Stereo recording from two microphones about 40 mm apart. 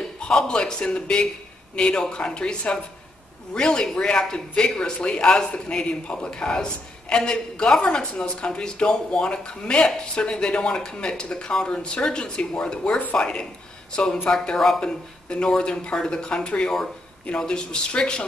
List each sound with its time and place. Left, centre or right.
0.5 s a man's voice: left